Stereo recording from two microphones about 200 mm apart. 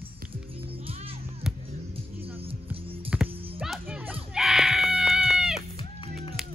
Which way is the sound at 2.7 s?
25° right (ahead or behind).